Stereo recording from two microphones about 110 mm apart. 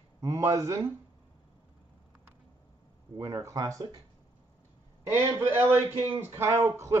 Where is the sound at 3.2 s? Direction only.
25° right (ahead or behind).